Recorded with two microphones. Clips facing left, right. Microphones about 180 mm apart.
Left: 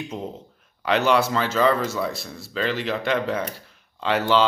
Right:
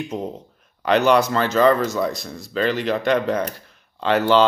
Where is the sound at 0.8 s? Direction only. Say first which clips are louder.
Right 3 dB; 5° left (ahead or behind).